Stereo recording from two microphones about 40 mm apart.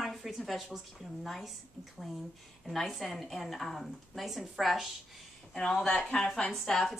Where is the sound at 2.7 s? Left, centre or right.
Centre.